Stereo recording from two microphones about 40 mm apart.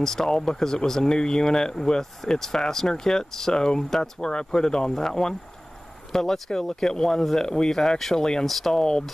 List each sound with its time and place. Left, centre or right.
0.0 s speech: centre